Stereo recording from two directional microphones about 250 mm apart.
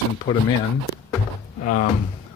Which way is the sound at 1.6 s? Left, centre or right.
Left.